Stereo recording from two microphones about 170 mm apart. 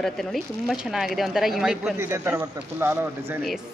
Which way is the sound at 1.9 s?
15° right (ahead or behind).